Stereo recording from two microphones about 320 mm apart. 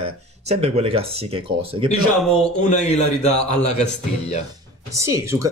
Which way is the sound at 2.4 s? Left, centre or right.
Left.